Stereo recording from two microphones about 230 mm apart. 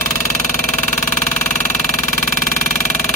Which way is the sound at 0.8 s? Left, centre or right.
Left.